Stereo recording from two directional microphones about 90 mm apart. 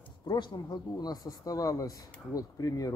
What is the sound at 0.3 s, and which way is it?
A man's voice, 55° left (ahead or behind).